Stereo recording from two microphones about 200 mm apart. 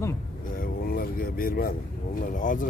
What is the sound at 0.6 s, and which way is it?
Vehicle, 45° left (ahead or behind).